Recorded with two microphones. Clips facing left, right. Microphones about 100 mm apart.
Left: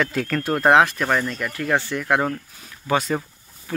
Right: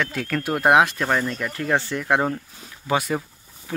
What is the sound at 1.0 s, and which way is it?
Speech, 5° right (ahead or behind).